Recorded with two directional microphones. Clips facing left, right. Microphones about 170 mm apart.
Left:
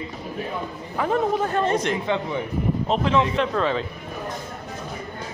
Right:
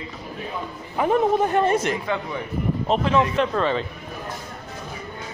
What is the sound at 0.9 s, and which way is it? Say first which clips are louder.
A man's voice: right 3 dB; 15° right (ahead or behind).